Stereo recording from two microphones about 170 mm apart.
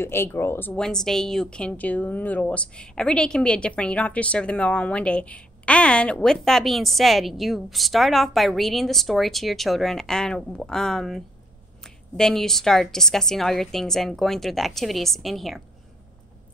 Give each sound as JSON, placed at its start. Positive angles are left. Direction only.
{"t": 0.0, "sound": "a woman's voice", "side_deg": 15}